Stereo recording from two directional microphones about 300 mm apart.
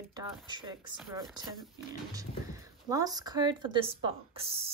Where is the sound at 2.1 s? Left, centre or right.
Centre.